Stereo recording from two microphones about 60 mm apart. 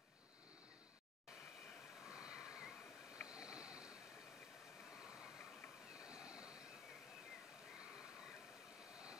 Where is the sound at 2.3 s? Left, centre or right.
Centre.